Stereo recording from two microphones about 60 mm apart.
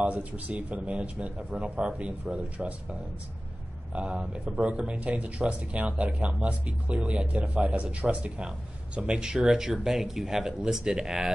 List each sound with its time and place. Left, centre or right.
0.0 s speech: right
3.9 s speech: centre